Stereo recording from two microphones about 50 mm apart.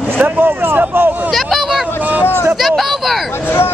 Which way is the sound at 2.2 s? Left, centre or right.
Left.